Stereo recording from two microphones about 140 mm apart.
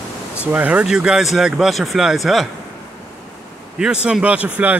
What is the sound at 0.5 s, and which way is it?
Speech, 10° right (ahead or behind).